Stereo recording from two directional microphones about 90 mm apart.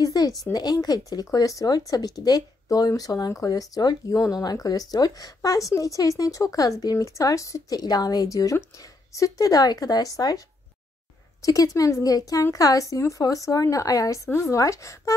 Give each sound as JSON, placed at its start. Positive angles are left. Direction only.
{"t": 0.0, "sound": "a sound", "side_deg": 45}
{"t": 0.5, "sound": "speech", "side_deg": 45}
{"t": 11.4, "sound": "speech", "side_deg": 40}